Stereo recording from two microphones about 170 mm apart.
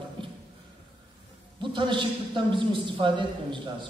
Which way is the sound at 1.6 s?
30° right (ahead or behind).